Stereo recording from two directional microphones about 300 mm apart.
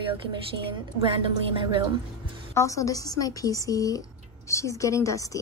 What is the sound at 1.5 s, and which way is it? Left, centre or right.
Speech, centre.